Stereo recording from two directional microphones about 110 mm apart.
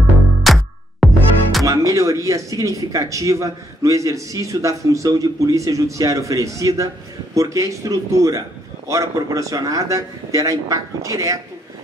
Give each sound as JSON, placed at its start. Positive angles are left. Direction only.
{"t": 0.5, "sound": "music", "side_deg": 0}
{"t": 1.6, "sound": "a man's voice", "side_deg": -30}